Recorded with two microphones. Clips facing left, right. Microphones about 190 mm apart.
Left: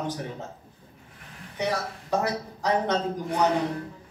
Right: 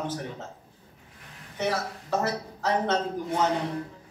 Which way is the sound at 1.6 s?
15° left (ahead or behind).